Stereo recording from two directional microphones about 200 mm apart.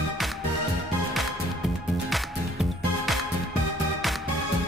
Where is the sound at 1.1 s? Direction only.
Centre (ahead or behind).